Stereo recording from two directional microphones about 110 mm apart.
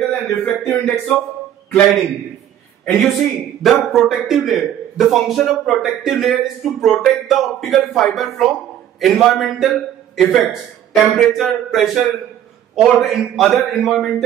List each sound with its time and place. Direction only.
0.1 s a sound: 25° left (ahead or behind)
0.7 s a man's voice: 5° left (ahead or behind)
2.8 s a man's voice: centre (ahead or behind)